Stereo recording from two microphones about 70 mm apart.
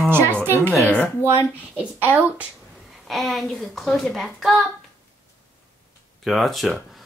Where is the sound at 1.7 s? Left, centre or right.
Right.